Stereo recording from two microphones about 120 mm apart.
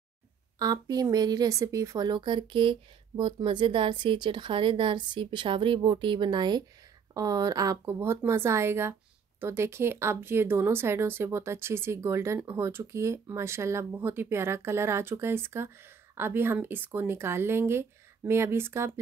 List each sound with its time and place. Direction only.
0.6 s a woman's voice: 30° right (ahead or behind)
7.8 s speech: 20° right (ahead or behind)